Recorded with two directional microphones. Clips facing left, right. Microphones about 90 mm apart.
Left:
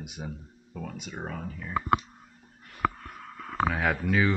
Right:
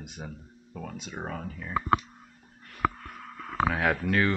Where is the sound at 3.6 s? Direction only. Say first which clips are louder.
Right 1 dB; centre (ahead or behind).